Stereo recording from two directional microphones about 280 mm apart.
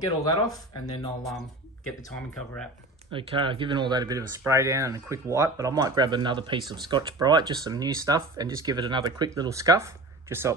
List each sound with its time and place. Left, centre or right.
0.2 s speech: centre
3.1 s speech: centre